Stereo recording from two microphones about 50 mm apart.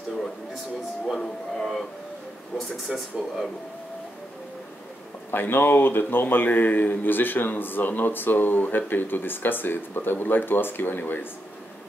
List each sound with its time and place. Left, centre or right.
1.1 s music: centre
2.9 s speech: centre
5.3 s a man's voice: left